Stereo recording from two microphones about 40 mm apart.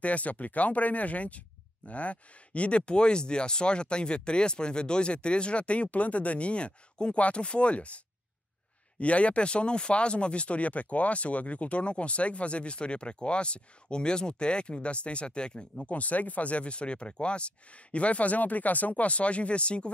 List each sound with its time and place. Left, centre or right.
0.0 s speech: left
9.0 s speech: left
15.9 s speech: left